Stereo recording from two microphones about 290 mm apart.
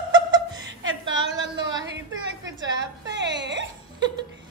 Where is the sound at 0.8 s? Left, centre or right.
Right.